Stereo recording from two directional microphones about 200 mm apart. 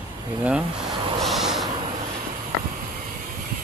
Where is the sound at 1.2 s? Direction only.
Centre (ahead or behind).